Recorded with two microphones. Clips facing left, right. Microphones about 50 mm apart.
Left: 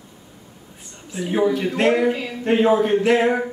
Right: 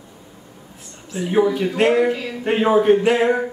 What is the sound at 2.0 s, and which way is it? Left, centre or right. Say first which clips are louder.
Speech: even; centre.